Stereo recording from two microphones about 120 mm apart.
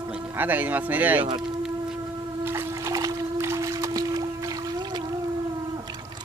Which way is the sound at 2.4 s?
25° right (ahead or behind).